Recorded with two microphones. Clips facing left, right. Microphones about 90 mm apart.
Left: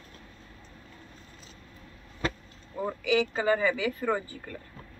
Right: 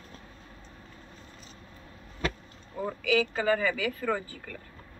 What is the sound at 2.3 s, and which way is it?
Speech, 10° left (ahead or behind).